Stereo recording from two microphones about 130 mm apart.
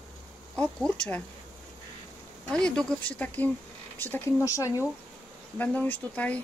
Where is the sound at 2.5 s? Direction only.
5° left (ahead or behind).